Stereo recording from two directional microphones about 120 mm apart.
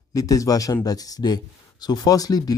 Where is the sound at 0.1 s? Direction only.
30° left (ahead or behind).